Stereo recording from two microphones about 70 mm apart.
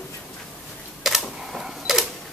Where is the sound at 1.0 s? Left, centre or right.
Centre.